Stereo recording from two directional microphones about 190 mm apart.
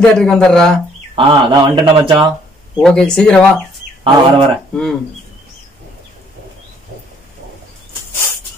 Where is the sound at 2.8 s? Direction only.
5° left (ahead or behind).